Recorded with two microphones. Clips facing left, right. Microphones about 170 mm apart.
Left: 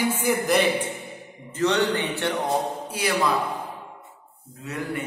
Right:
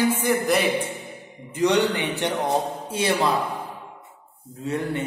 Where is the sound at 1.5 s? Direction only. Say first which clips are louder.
Right 2 dB; 15° right (ahead or behind).